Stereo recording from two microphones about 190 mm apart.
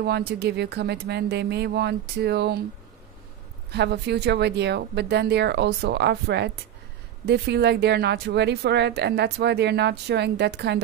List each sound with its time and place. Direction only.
0.0 s a woman's voice: 60° right (ahead or behind)
3.7 s a woman's voice: 60° right (ahead or behind)